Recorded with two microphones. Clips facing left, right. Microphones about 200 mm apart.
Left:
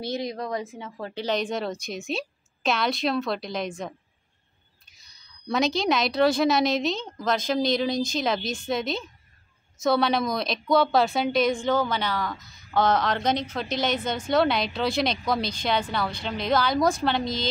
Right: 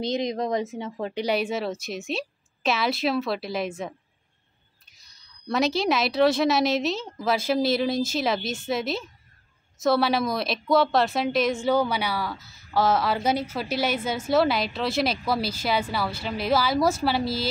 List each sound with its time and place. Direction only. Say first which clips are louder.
0.0 s a woman's voice: right 4 dB; 20° right (ahead or behind); by 3.9 s 5° right (ahead or behind)
4.9 s a woman's voice: left 1 dB; centre (ahead or behind)